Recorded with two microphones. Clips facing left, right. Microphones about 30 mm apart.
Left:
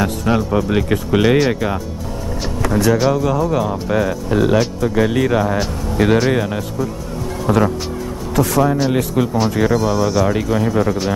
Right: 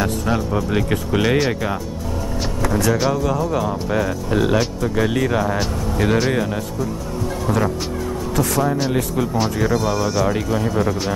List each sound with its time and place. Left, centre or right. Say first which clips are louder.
0.0 s speech: left 3 dB; centre
0.8 s speech: left 4 dB; centre
8.9 s speech: left 3 dB; centre
9.8 s speech: left 3 dB; centre